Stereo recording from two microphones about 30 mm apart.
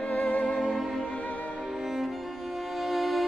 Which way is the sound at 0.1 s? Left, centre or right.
Left.